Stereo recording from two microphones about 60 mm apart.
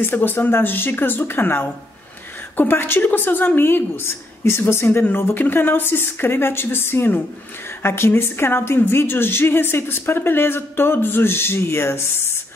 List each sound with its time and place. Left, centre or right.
0.0 s a woman's voice: left